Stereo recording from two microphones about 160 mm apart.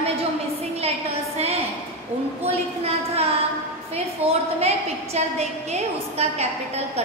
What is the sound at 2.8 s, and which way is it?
A woman's voice, 40° right (ahead or behind).